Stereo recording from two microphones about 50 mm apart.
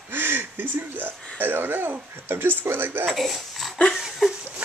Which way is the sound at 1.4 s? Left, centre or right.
Right.